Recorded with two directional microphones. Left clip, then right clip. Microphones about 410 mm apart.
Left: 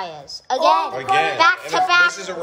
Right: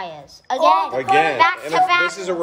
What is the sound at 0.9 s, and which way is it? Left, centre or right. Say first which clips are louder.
Speech: right 2 dB; centre.